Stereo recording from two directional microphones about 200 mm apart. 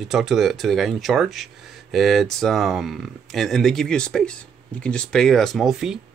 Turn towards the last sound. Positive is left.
turn(degrees=0)  # may be behind; listen again after turning